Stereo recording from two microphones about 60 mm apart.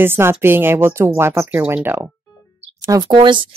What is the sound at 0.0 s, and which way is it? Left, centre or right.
Speech, right.